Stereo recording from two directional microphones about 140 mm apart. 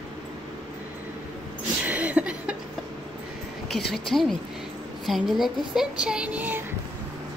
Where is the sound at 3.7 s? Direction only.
5° left (ahead or behind); by 6.6 s 15° right (ahead or behind).